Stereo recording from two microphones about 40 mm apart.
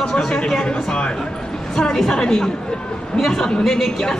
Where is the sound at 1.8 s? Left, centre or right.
Centre.